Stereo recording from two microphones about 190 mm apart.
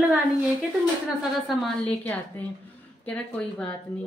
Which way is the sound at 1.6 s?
5° left (ahead or behind).